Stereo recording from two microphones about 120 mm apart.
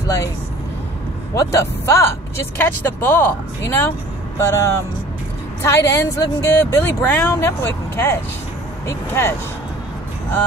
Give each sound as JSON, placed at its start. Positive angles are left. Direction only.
{"t": 1.3, "sound": "a woman's voice", "side_deg": 25}